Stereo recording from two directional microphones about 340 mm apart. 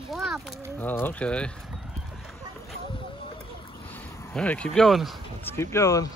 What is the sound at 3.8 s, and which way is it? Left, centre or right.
Speech, centre.